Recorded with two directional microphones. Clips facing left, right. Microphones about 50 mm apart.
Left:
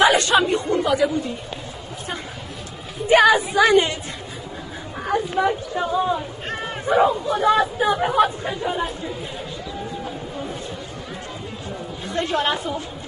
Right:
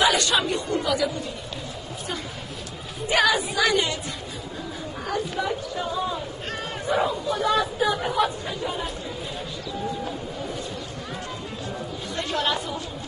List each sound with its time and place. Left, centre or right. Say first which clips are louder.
0.0 s speech: left 5 dB; left
3.1 s a woman's voice: left 7 dB; left
5.0 s speech: left 7 dB; left
6.4 s hubbub: left 3 dB; left
7.8 s speech: left 5 dB; left
12.1 s a woman's voice: left 4 dB; left